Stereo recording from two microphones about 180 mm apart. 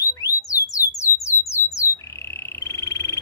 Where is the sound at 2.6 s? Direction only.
15° left (ahead or behind).